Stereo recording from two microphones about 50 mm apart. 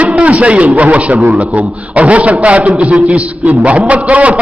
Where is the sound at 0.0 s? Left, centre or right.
Right.